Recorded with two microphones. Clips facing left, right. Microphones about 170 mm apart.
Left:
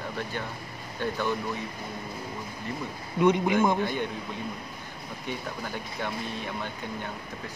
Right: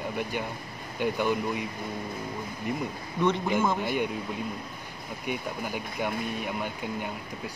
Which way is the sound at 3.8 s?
10° right (ahead or behind).